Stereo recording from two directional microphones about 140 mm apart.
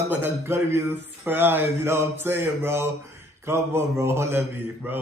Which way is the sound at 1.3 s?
15° right (ahead or behind).